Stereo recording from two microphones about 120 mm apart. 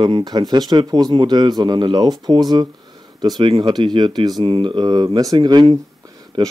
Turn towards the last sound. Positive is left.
turn(degrees=-35)  # may be behind; listen again after turning